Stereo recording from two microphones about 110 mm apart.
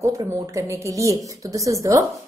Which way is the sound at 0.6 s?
30° right (ahead or behind).